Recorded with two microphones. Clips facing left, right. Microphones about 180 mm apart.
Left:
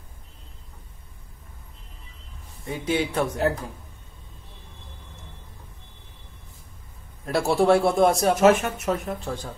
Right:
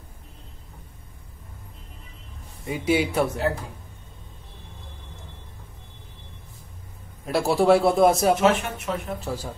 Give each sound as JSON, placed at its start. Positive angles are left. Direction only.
{"t": 2.6, "sound": "a man's voice", "side_deg": -10}
{"t": 7.2, "sound": "speech", "side_deg": 0}
{"t": 8.4, "sound": "speech", "side_deg": 45}
{"t": 9.2, "sound": "a man's voice", "side_deg": -5}